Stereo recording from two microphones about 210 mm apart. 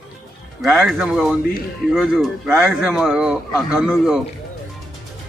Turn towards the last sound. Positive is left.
turn(degrees=-5)  # may be behind; listen again after turning